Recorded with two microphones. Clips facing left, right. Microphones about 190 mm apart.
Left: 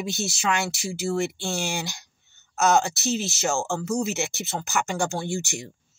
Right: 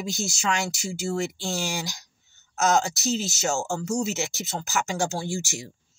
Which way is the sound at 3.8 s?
60° left (ahead or behind).